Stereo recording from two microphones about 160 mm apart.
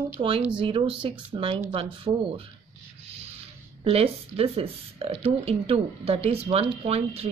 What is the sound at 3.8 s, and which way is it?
A woman's voice, 35° right (ahead or behind).